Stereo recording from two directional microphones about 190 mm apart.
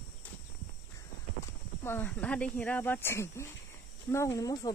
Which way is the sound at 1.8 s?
10° left (ahead or behind).